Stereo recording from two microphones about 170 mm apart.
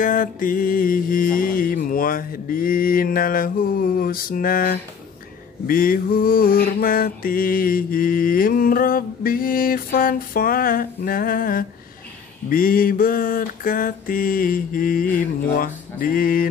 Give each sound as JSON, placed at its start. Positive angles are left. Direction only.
{"t": 0.0, "sound": "mantra", "side_deg": 55}